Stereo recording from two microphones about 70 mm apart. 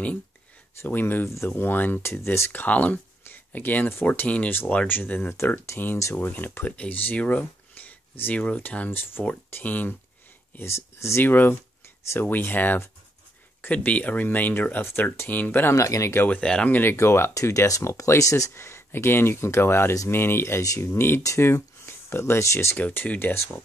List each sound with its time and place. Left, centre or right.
0.8 s speech: left
2.6 s speech: left
10.6 s speech: left
11.2 s speech: left
15.7 s speech: left
16.3 s speech: centre
16.9 s speech: left
22.8 s speech: left
23.1 s speech: left